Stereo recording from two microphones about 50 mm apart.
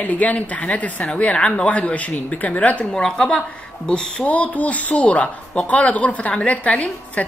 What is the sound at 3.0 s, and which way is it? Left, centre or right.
A woman's voice, centre.